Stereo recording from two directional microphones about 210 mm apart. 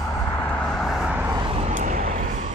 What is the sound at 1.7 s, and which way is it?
Vehicle, 40° right (ahead or behind).